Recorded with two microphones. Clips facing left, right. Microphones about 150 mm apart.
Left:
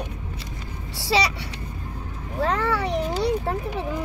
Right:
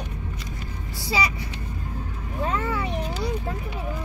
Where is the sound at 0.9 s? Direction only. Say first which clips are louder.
Left 4 dB; 75° left (ahead or behind).